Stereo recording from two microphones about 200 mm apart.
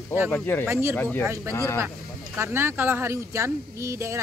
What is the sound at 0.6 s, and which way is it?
Speech, 15° right (ahead or behind).